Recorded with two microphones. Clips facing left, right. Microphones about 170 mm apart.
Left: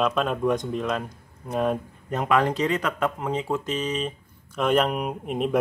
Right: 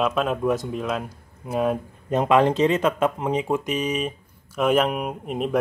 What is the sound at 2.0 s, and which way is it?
Speech, 20° right (ahead or behind).